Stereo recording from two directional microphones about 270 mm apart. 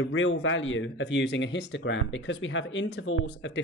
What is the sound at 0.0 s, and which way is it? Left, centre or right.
Speech, left.